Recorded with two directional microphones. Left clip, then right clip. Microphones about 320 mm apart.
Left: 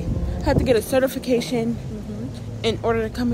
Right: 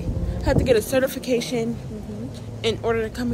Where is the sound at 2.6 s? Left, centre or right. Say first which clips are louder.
Left 1 dB; centre.